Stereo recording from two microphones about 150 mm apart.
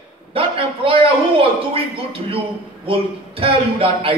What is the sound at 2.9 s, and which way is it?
A man's voice, 40° right (ahead or behind).